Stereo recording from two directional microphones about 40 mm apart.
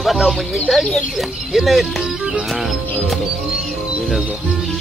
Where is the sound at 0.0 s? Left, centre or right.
Centre.